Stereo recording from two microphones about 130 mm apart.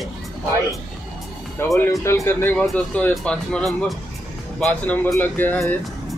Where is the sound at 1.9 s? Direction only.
20° left (ahead or behind).